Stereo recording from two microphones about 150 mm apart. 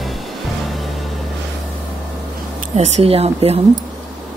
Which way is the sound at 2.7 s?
45° right (ahead or behind).